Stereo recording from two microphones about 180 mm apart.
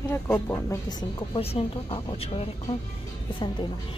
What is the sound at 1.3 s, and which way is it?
Speech, 30° left (ahead or behind).